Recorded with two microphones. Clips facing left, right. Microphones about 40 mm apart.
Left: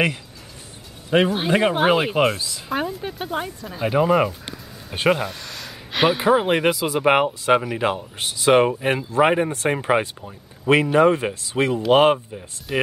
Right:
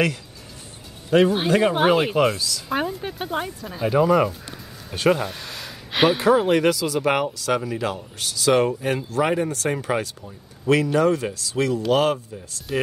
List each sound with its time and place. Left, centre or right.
1.1 s speech: left
1.8 s speech: centre
2.3 s speech: left
2.7 s speech: centre
3.8 s speech: centre
5.3 s a sound: centre
6.1 s speech: left